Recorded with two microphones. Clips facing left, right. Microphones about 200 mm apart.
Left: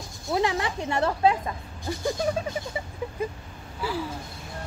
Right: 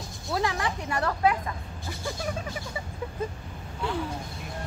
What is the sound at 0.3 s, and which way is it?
Speech, 20° left (ahead or behind).